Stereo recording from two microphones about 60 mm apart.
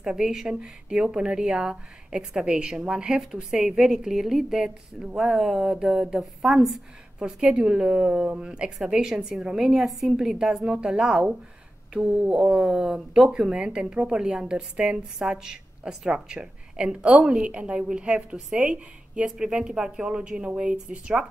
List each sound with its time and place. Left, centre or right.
0.0 s a woman's voice: centre